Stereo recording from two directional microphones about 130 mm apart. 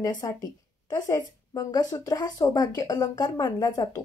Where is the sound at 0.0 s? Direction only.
30° left (ahead or behind).